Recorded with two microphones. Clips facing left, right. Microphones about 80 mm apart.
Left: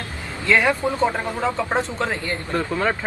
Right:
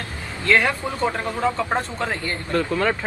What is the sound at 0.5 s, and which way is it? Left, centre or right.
Speech, centre.